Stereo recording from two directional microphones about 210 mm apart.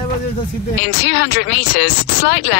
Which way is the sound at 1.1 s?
55° left (ahead or behind).